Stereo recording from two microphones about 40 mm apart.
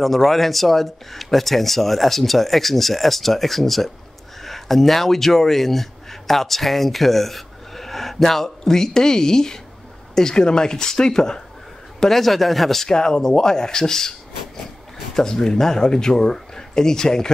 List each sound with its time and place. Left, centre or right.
0.0 s speech: centre
12.0 s speech: centre
12.9 s speech: centre
15.1 s speech: centre